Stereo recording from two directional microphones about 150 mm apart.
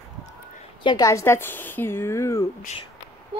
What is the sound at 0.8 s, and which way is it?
A woman's voice, 25° left (ahead or behind).